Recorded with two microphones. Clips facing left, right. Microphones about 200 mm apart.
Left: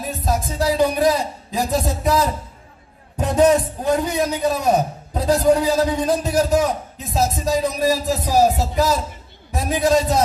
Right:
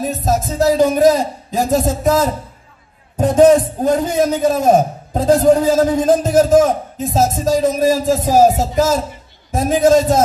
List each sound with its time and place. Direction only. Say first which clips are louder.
0.0 s a man's voice: right 5 dB; 45° right (ahead or behind)